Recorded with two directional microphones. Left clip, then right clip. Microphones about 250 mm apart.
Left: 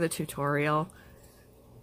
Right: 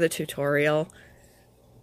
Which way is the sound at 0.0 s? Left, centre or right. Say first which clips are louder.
Right 5 dB; centre.